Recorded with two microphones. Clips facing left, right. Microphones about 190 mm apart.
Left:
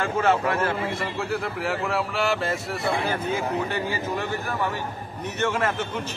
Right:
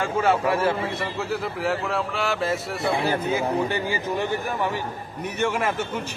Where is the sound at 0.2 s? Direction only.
10° right (ahead or behind).